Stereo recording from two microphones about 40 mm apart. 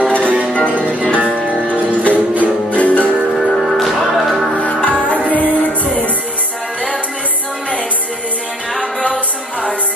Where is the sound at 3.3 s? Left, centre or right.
Centre.